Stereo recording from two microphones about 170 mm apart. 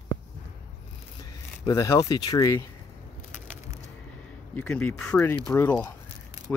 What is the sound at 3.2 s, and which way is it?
Crushing, 45° left (ahead or behind).